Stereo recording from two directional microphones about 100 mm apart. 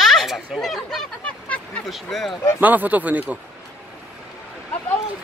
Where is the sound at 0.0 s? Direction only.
Centre (ahead or behind).